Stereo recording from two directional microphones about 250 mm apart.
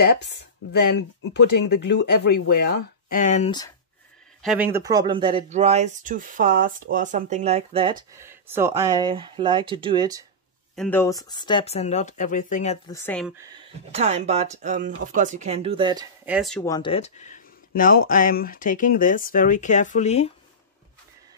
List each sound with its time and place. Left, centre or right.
0.0 s speech: left; by 3.7 s centre
4.4 s speech: centre; by 8.0 s right
8.2 s speech: centre
10.8 s speech: centre; by 12.7 s left
12.8 s speech: centre
13.9 s speech: right
16.3 s speech: centre
16.6 s speech: centre